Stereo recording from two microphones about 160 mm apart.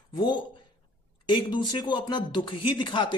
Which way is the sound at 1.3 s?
30° left (ahead or behind).